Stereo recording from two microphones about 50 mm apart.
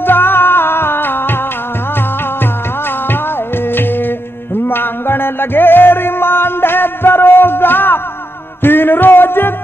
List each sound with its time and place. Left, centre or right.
0.0 s music: left
3.7 s music: left